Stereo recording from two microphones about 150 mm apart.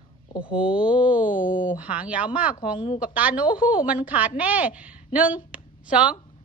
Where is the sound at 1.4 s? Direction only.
65° left (ahead or behind).